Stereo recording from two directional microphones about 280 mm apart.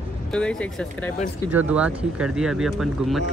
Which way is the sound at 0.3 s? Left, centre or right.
Centre.